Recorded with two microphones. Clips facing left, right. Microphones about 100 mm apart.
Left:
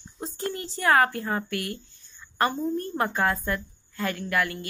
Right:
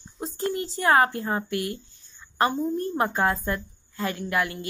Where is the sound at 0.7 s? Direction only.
25° right (ahead or behind).